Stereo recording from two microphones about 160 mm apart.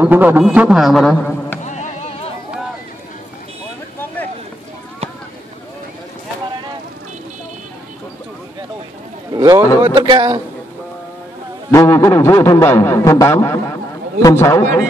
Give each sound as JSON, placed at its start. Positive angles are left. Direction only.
{"t": 0.0, "sound": "a man's voice", "side_deg": -10}
{"t": 1.6, "sound": "music", "side_deg": 50}
{"t": 9.3, "sound": "a man's voice", "side_deg": -25}
{"t": 11.7, "sound": "a man's voice", "side_deg": 15}